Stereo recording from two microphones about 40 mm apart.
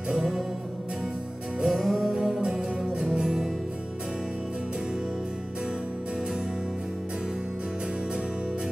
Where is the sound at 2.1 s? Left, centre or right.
Centre.